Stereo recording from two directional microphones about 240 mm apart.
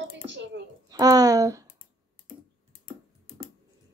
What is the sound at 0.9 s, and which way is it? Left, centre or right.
Speech, centre.